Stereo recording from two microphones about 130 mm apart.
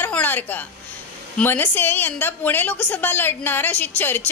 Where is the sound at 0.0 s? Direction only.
15° left (ahead or behind).